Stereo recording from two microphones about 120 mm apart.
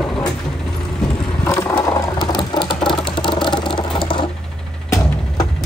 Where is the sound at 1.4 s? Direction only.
20° left (ahead or behind).